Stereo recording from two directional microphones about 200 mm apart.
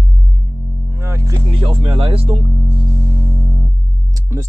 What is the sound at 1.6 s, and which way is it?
Speech, 25° right (ahead or behind).